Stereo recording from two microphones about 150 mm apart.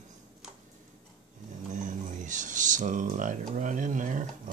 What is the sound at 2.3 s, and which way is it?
Speech, 55° right (ahead or behind).